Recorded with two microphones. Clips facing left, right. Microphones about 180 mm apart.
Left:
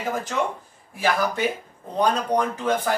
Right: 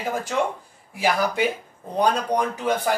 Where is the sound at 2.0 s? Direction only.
10° right (ahead or behind).